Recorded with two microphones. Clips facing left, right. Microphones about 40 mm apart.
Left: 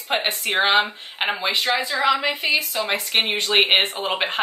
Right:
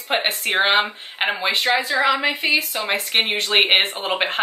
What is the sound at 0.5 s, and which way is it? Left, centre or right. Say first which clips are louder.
Speech: even; right.